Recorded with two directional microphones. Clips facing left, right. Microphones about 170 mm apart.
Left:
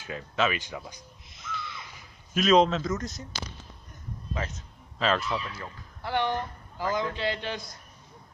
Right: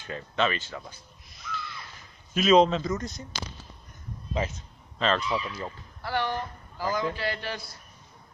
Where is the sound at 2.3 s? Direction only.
Centre (ahead or behind).